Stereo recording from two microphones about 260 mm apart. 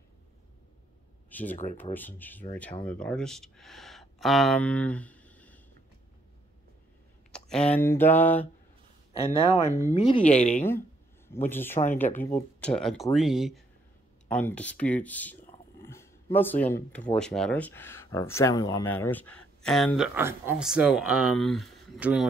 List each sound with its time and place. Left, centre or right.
1.3 s speech: centre
7.3 s speech: centre
9.9 s speech: left
11.4 s speech: centre